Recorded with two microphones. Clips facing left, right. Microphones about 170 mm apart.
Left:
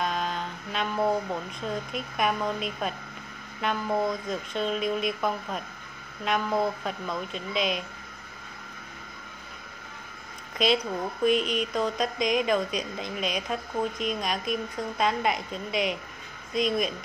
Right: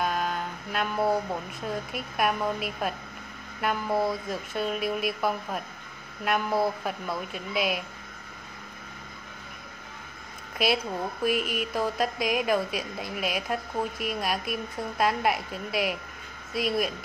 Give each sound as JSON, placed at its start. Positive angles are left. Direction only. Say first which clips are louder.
{"t": 0.0, "sound": "a sound", "louder": "right 1 dB", "side_deg": -5}
{"t": 1.6, "sound": "a woman's voice", "louder": "left 1 dB", "side_deg": -5}
{"t": 10.6, "sound": "a woman's voice", "louder": "left 1 dB", "side_deg": -5}